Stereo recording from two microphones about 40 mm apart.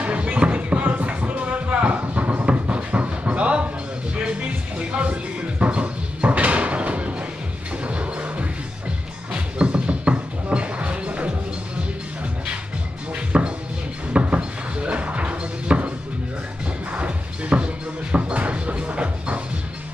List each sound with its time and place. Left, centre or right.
0.0 s a sound: right
7.8 s music: right
13.1 s music: right
16.9 s music: right